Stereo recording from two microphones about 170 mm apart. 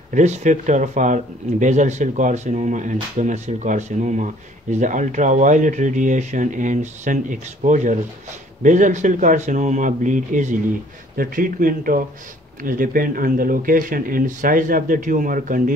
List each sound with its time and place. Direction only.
0.1 s speech: 45° right (ahead or behind)